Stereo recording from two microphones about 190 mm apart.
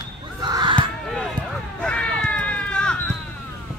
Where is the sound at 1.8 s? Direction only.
5° left (ahead or behind).